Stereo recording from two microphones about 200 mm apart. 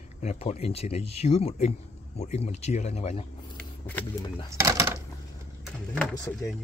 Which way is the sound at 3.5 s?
10° left (ahead or behind).